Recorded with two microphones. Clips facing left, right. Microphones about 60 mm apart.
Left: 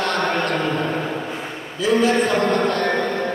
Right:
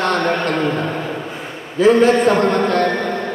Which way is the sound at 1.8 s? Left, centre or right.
Right.